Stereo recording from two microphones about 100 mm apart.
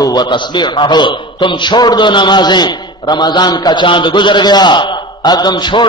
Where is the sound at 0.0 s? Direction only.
45° left (ahead or behind).